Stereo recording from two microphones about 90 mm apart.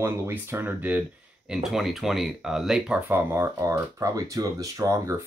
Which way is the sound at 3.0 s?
25° right (ahead or behind).